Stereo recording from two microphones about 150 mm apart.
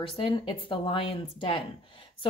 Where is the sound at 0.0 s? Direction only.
35° left (ahead or behind).